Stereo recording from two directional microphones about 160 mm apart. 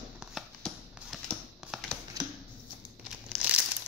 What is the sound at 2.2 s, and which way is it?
Shuffling cards, 25° right (ahead or behind).